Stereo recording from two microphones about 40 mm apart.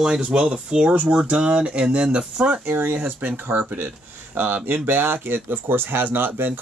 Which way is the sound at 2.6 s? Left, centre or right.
Right.